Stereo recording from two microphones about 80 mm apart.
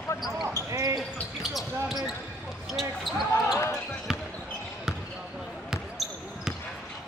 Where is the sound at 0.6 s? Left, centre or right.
Right.